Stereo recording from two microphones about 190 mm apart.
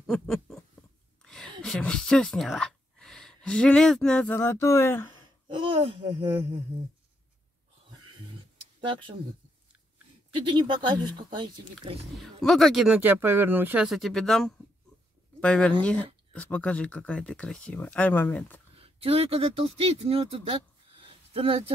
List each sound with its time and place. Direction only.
0.0 s a sound: centre (ahead or behind)
1.6 s speech: 5° left (ahead or behind)
5.5 s speech: 25° right (ahead or behind)
8.8 s speech: 25° right (ahead or behind)
10.4 s speech: 25° right (ahead or behind)
12.2 s speech: centre (ahead or behind)
18.8 s speech: 30° right (ahead or behind)